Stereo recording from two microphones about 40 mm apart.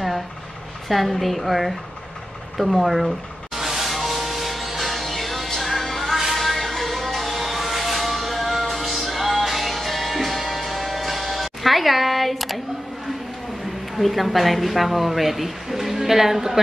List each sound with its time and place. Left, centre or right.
0.8 s a woman's voice: centre
2.5 s music: centre
13.9 s a woman's voice: centre